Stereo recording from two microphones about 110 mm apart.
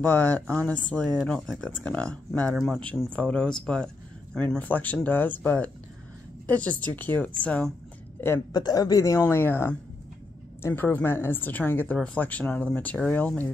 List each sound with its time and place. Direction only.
0.0 s speech: 10° left (ahead or behind)
3.1 s a woman's voice: 10° left (ahead or behind)
8.5 s speech: 35° left (ahead or behind); by 13.5 s 15° left (ahead or behind)